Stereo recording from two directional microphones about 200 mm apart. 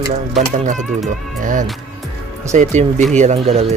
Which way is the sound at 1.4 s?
40° right (ahead or behind).